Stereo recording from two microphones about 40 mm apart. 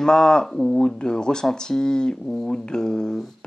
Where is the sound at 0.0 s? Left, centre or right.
Centre.